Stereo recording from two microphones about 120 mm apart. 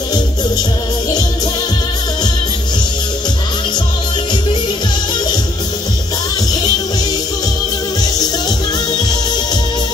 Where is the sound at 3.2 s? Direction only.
35° left (ahead or behind).